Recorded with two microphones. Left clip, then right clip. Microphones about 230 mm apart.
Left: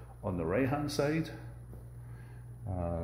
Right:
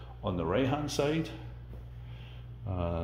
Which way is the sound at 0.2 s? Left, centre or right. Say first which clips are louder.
Right 2 dB; centre.